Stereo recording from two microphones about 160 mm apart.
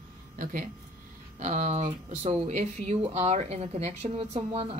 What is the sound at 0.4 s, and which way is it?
Speech, 55° right (ahead or behind).